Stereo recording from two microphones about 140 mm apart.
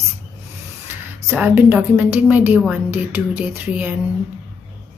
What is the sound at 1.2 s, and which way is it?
A woman's voice, 15° right (ahead or behind).